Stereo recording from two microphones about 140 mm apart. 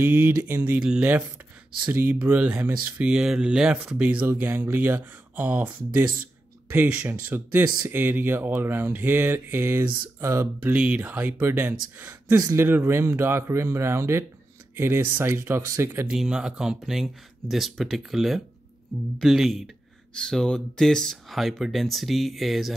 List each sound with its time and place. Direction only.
0.0 s speech: 15° right (ahead or behind)
0.7 s speech: 5° right (ahead or behind)
6.7 s speech: 10° right (ahead or behind)
16.1 s speech: 5° right (ahead or behind)